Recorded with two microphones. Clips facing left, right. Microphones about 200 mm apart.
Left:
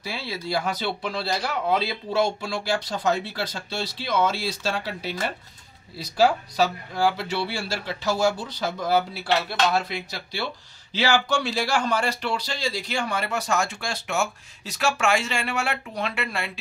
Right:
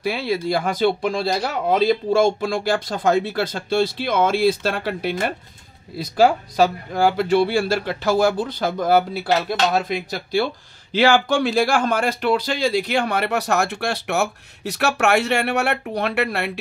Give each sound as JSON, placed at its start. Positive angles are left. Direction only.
{"t": 0.0, "sound": "speech", "side_deg": -55}